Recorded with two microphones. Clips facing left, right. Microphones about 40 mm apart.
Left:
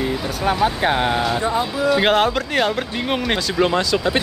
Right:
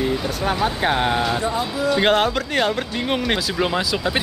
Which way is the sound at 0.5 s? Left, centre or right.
Centre.